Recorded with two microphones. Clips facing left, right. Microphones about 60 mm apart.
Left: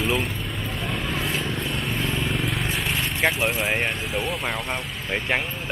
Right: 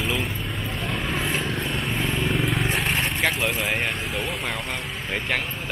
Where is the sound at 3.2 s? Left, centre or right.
Centre.